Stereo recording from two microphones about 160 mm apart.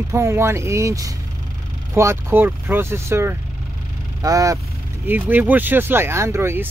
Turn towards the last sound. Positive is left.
turn(degrees=-15)  # may be behind; listen again after turning